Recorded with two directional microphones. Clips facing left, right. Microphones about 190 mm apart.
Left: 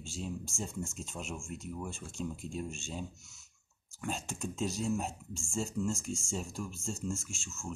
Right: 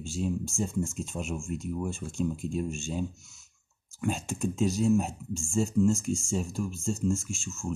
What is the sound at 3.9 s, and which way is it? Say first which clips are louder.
Speech: right 7 dB; 5° right (ahead or behind).